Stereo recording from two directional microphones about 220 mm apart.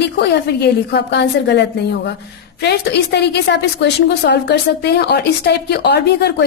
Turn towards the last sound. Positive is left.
turn(degrees=50)  # may be behind; listen again after turning